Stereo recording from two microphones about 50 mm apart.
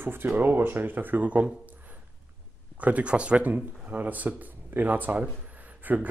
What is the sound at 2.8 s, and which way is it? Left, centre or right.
Speech, right.